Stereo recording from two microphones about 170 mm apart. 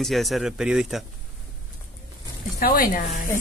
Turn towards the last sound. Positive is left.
turn(degrees=55)  # may be behind; listen again after turning